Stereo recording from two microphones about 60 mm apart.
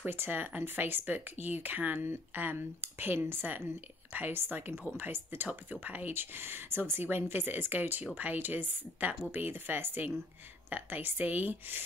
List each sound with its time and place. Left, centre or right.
0.0 s speech: right